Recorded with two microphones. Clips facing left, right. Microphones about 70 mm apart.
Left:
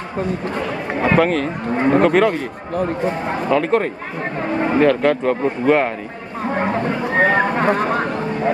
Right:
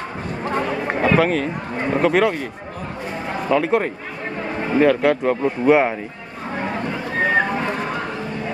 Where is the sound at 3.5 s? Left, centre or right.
Centre.